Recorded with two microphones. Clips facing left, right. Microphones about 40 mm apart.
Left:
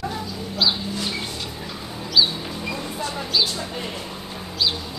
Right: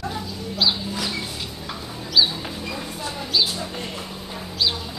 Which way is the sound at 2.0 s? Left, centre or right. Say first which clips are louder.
Even; centre.